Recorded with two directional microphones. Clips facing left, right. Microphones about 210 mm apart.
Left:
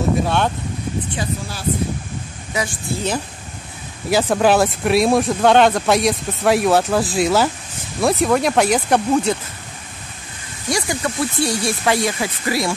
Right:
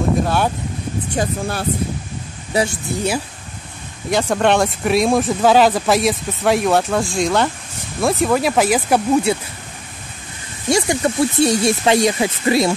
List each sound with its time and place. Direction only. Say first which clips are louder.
0.2 s speech: right 1 dB; 5° right (ahead or behind)
1.1 s speech: right 5 dB; 55° right (ahead or behind)
2.5 s speech: right 5 dB; 25° right (ahead or behind)
4.1 s speech: left 1 dB; 5° left (ahead or behind)
10.7 s speech: right 5 dB; 25° right (ahead or behind)